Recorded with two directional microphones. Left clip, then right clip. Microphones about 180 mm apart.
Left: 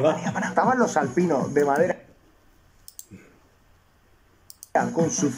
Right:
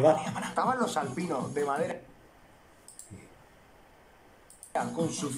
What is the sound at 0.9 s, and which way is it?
Speech, 35° left (ahead or behind).